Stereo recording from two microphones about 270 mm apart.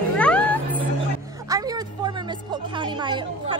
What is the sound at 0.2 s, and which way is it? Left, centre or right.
Cat, centre.